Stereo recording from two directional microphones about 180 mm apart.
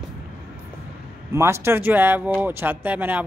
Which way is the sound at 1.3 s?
15° right (ahead or behind).